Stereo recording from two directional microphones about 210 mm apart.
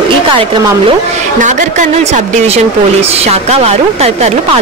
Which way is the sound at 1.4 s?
35° right (ahead or behind).